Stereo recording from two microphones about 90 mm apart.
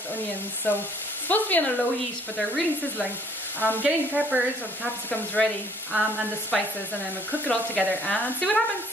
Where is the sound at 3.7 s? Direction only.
20° right (ahead or behind).